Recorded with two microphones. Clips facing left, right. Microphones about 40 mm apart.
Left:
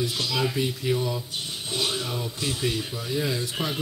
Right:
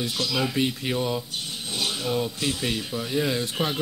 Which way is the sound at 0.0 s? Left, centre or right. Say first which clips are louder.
Even; right.